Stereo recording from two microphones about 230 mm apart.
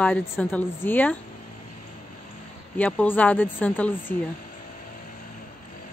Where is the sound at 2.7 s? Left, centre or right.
Centre.